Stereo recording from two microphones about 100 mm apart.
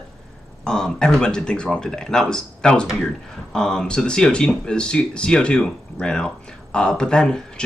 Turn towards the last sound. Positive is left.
turn(degrees=5)  # may be behind; listen again after turning